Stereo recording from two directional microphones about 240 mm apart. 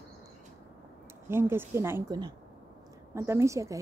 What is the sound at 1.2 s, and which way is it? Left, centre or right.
Speech, centre.